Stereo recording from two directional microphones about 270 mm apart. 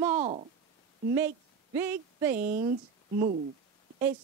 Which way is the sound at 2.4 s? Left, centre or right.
Right.